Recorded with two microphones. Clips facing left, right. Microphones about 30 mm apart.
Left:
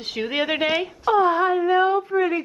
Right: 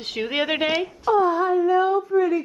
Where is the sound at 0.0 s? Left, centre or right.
Centre.